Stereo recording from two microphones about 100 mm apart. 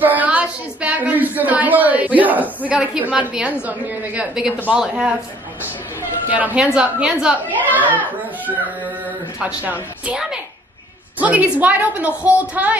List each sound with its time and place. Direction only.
0.0 s a woman's voice: 15° right (ahead or behind)
6.2 s a woman's voice: 15° right (ahead or behind)
9.7 s a woman's voice: 10° right (ahead or behind)